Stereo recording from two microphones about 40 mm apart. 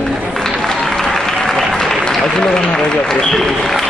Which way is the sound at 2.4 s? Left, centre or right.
Centre.